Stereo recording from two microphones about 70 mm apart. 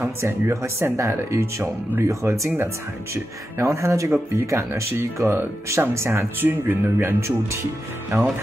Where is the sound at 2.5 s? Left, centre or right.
Right.